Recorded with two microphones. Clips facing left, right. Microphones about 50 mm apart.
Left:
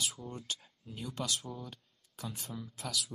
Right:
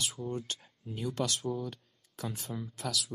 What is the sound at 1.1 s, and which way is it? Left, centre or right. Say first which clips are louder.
Speech: right 6 dB; right.